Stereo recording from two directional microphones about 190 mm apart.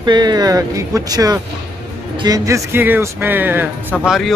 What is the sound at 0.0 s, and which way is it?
Speech, 20° right (ahead or behind).